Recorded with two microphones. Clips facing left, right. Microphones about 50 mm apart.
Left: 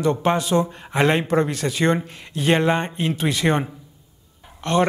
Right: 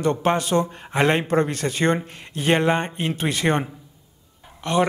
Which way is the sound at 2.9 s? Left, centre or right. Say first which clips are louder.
Left 2 dB; right.